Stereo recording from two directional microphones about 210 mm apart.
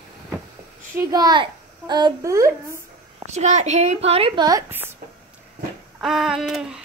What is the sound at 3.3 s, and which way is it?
A woman's voice, 35° right (ahead or behind).